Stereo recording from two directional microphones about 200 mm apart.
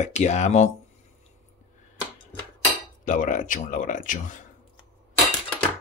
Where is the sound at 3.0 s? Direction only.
40° left (ahead or behind).